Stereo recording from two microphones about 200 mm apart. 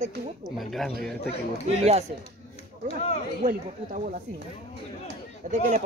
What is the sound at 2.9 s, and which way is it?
Speech, 30° left (ahead or behind).